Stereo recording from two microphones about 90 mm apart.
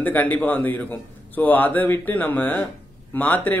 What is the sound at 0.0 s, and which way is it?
A man's voice, 20° left (ahead or behind).